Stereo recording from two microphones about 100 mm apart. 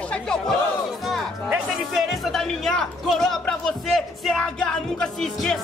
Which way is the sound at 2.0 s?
Centre (ahead or behind).